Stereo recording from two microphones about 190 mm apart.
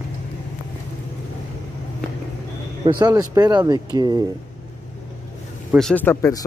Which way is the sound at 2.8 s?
20° right (ahead or behind).